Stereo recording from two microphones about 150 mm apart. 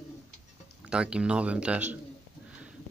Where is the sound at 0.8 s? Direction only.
5° right (ahead or behind).